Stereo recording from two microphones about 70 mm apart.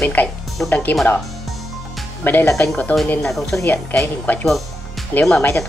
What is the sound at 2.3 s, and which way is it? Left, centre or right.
Speech, left.